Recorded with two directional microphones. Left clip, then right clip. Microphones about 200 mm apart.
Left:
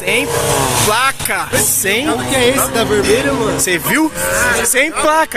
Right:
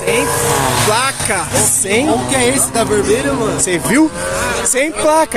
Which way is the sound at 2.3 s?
20° right (ahead or behind).